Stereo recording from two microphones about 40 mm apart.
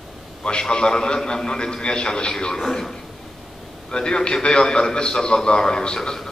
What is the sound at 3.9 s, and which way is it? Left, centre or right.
A man's voice, left.